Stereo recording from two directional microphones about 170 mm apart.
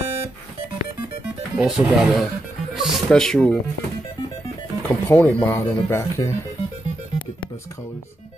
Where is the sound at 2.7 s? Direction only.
Centre (ahead or behind).